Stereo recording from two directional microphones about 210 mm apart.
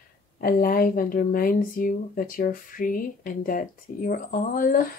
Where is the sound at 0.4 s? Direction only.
45° left (ahead or behind).